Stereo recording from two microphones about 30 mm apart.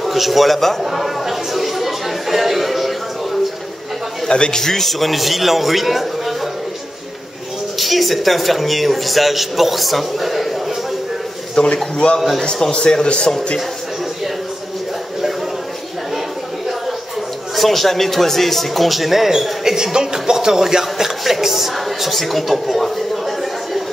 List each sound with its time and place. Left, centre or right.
0.0 s speech: centre
0.8 s chatter: centre
4.3 s a man's voice: left
4.6 s speech: centre
7.7 s speech: centre
11.5 s a man's voice: left
17.6 s speech: centre; by 20.6 s right
20.8 s speech: centre